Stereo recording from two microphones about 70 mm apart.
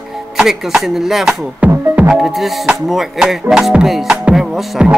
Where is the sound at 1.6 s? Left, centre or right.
Centre.